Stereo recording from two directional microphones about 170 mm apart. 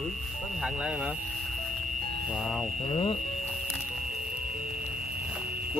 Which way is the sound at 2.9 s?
35° left (ahead or behind).